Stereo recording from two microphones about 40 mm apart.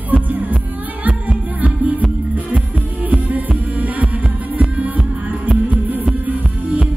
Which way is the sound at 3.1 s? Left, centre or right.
Right.